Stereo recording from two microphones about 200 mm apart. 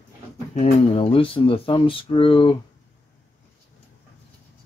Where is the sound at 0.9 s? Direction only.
25° left (ahead or behind).